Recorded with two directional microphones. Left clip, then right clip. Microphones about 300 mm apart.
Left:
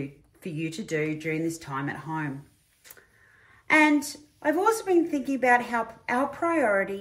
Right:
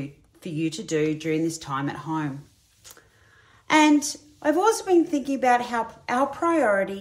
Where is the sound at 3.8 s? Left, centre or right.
Centre.